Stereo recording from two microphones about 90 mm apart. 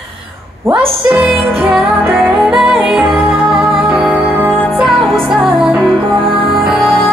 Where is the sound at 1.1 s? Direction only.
15° right (ahead or behind).